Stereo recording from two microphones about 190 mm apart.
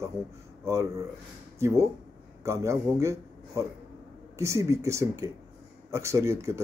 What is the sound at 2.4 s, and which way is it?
A man's voice, 15° right (ahead or behind).